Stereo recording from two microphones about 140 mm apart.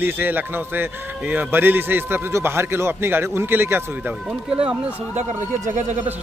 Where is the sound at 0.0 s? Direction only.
15° right (ahead or behind).